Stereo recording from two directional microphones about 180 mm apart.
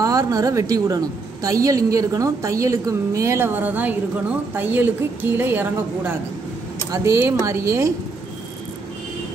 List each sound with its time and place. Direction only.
0.0 s a woman's voice: 20° right (ahead or behind)